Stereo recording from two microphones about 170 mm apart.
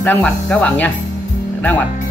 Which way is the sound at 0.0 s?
10° left (ahead or behind).